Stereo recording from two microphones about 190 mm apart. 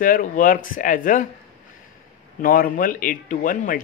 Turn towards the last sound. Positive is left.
turn(degrees=45)  # may be behind; listen again after turning